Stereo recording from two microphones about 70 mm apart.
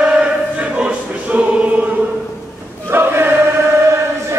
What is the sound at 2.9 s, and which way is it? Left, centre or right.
Choir, right.